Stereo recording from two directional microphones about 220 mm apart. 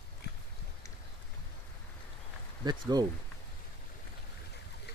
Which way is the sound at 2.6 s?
20° right (ahead or behind).